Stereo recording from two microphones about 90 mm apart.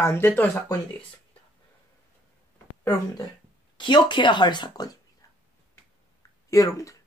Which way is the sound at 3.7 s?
60° left (ahead or behind).